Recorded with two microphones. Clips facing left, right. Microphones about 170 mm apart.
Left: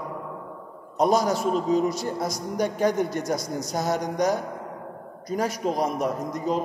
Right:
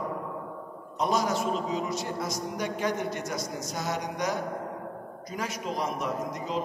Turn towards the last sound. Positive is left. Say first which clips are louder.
# left 5 dB
turn(degrees=40)  # may be behind; listen again after turning